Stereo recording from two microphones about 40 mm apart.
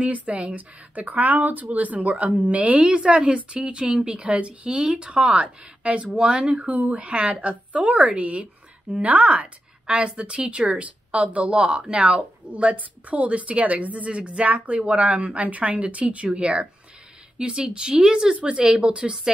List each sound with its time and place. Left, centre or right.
0.0 s a woman's voice: right
0.9 s a woman's voice: right
3.9 s a woman's voice: right
6.6 s a woman's voice: right
12.4 s a woman's voice: right